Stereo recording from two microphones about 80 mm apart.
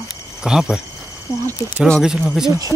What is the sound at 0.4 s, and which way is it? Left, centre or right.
Speech, centre.